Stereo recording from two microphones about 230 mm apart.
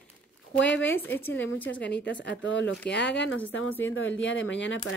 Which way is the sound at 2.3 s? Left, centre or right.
Left.